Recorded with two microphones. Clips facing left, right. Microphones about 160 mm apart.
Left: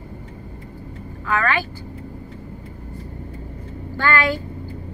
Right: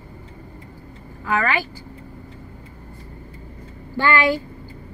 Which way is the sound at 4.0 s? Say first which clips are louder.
Right 2 dB; 15° right (ahead or behind).